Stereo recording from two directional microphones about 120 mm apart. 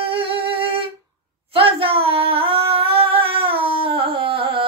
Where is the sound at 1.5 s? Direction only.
50° right (ahead or behind).